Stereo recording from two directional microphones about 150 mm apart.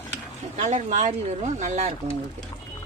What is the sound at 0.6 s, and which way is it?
Speech, 50° right (ahead or behind).